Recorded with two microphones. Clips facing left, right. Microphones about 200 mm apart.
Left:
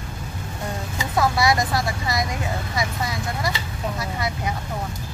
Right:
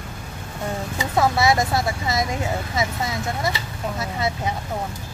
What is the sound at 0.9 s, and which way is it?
Speech, 20° right (ahead or behind).